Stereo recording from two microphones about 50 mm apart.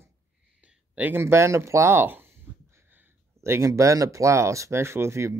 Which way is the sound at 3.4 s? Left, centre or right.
Right.